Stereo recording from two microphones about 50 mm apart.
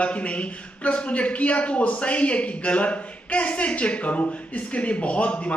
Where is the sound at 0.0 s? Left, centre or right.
Left.